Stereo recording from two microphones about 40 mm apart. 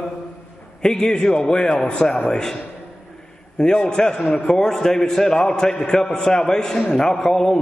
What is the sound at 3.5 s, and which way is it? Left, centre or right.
A man's voice, centre.